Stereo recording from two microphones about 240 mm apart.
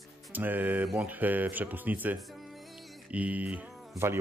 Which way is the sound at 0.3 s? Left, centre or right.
Centre.